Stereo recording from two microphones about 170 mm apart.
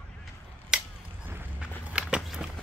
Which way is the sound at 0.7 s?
5° right (ahead or behind).